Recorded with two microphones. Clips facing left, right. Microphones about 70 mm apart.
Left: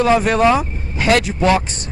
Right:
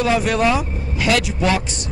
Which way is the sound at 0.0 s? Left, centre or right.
Left.